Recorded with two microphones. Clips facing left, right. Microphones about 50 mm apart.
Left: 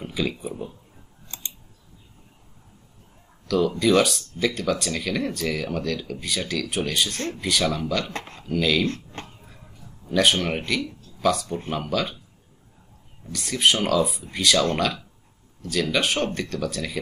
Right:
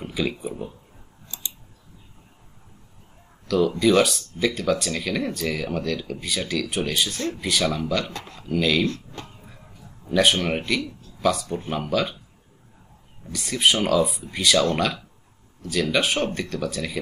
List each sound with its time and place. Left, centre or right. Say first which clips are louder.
0.0 s speech: right 1 dB; centre
1.3 s scissors: right 2 dB; left
3.4 s speech: right 1 dB; centre
8.1 s speech: left 2 dB; left
8.4 s speech: right 1 dB; centre
8.8 s speech: right 1 dB; left
10.0 s speech: right 1 dB; centre
13.3 s speech: even; centre